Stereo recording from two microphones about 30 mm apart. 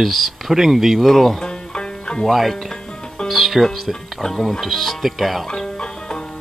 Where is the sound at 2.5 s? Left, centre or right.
Left.